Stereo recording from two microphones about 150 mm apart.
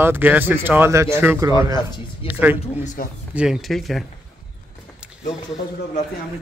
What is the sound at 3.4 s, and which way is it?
Speech, centre (ahead or behind).